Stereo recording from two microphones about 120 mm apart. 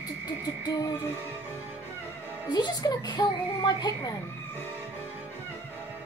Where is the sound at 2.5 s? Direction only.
35° left (ahead or behind).